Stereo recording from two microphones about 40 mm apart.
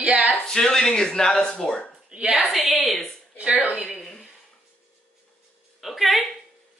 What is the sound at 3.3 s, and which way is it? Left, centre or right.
Speech, right.